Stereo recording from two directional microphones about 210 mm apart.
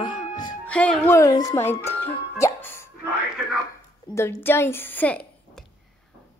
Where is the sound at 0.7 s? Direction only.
5° left (ahead or behind).